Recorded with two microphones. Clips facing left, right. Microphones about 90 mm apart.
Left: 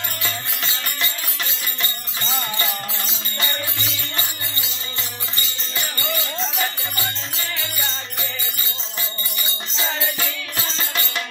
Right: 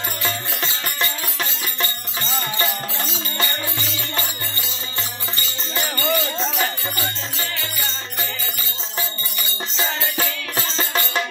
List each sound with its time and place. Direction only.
0.6 s music: 25° right (ahead or behind)
5.3 s music: 25° right (ahead or behind)
9.8 s music: 35° right (ahead or behind)